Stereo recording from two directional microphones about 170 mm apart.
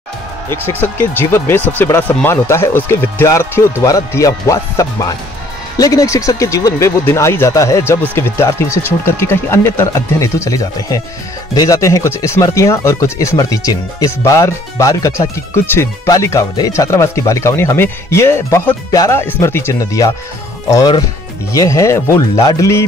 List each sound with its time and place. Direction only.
0.7 s speech: 10° left (ahead or behind)